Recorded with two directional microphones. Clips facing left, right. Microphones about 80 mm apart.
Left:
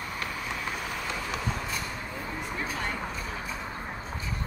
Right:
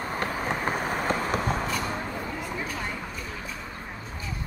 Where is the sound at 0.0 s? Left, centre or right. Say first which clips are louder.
Right 6 dB; right.